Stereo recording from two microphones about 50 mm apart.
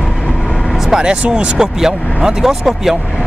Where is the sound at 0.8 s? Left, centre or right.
Centre.